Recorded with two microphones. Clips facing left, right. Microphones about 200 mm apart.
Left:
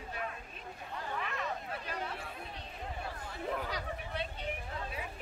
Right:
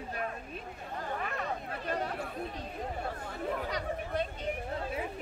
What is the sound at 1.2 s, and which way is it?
Chatter, 45° right (ahead or behind).